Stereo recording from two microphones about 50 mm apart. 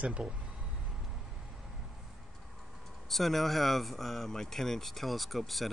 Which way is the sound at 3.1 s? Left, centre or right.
Centre.